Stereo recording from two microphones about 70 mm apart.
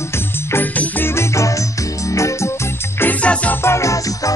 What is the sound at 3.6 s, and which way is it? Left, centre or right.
Music, left.